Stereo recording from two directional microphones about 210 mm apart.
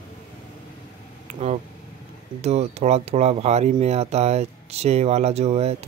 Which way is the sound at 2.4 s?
30° right (ahead or behind).